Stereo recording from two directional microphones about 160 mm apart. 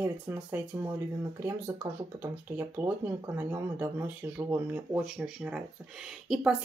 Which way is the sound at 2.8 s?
10° right (ahead or behind).